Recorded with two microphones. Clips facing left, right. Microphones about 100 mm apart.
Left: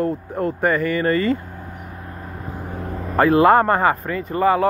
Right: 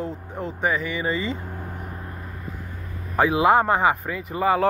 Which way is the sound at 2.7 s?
80° left.